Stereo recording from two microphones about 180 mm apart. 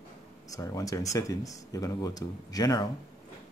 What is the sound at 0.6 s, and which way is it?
Speech, 20° left (ahead or behind).